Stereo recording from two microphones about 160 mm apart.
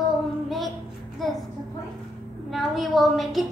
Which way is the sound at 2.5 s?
Centre (ahead or behind).